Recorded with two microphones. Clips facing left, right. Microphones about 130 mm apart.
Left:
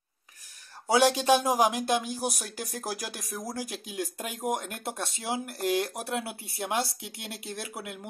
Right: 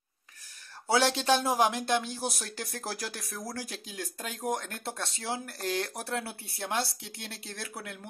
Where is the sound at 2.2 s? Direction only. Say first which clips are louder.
Left 3 dB; centre (ahead or behind).